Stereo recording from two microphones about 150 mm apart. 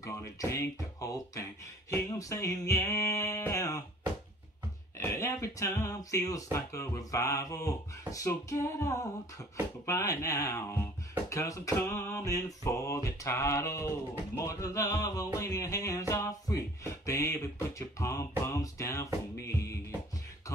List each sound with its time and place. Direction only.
0.0 s speech: 20° left (ahead or behind)
4.9 s speech: 20° left (ahead or behind)